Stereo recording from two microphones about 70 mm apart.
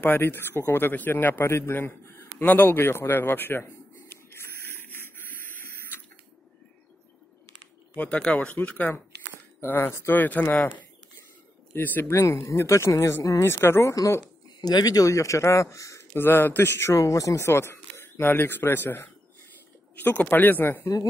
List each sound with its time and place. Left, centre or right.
0.0 s a man's voice: left
4.1 s a sound: left
7.9 s speech: centre
9.6 s speech: left
11.7 s speech: left
12.1 s a man's voice: left
14.6 s a man's voice: left
16.1 s a man's voice: left